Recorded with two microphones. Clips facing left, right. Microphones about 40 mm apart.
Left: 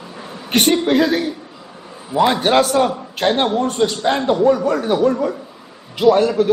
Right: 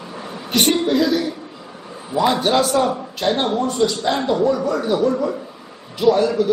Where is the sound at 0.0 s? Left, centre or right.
Centre.